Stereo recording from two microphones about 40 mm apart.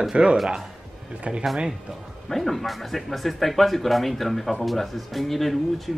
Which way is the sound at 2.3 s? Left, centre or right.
Centre.